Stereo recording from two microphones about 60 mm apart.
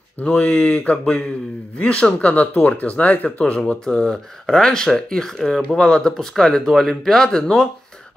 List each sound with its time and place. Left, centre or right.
0.2 s speech: left